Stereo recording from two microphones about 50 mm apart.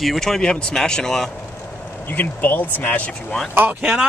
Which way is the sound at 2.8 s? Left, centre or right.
Left.